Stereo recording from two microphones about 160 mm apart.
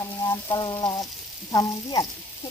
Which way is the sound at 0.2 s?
25° left (ahead or behind).